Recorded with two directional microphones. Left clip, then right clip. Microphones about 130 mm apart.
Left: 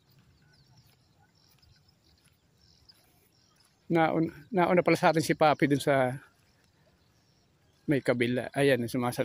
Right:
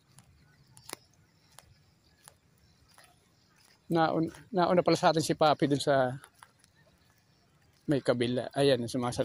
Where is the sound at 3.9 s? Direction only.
35° left (ahead or behind).